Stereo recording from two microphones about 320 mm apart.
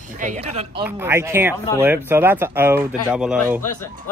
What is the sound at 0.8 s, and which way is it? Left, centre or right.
Speech, centre.